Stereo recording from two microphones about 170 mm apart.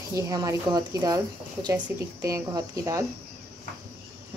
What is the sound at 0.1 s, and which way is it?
Speech, 20° right (ahead or behind).